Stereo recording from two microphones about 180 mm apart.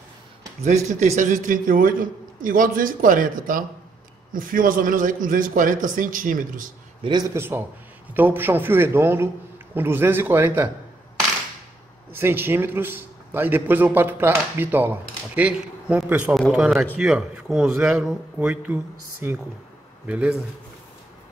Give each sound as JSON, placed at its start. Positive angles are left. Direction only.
{"t": 0.7, "sound": "a man's voice", "side_deg": -40}
{"t": 7.0, "sound": "a man's voice", "side_deg": -25}
{"t": 7.3, "sound": "a man's voice", "side_deg": -15}
{"t": 12.1, "sound": "a man's voice", "side_deg": -10}